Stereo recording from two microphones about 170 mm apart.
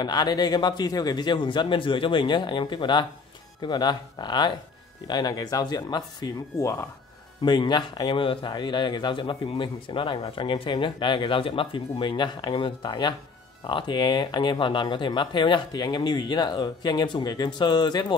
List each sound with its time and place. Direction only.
0.0 s speech: 25° left (ahead or behind)